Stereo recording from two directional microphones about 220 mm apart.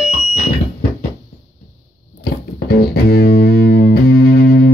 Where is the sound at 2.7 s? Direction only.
45° left (ahead or behind).